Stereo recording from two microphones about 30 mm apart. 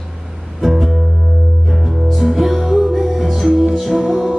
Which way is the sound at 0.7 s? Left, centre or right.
Centre.